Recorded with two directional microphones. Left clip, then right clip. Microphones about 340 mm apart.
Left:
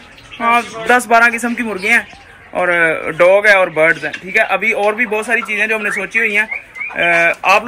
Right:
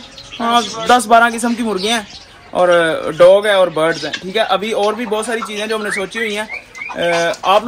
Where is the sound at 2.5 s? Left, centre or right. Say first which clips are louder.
Right 1 dB; centre.